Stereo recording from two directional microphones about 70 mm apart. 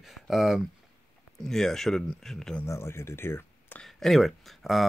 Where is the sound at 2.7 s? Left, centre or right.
Left.